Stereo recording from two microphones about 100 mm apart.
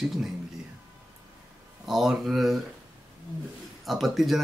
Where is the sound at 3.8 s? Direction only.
Centre (ahead or behind).